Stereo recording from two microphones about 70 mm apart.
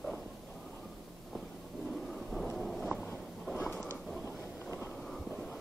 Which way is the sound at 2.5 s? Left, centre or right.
Centre.